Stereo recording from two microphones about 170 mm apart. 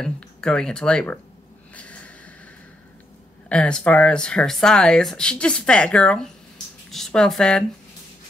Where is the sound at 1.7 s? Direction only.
5° left (ahead or behind).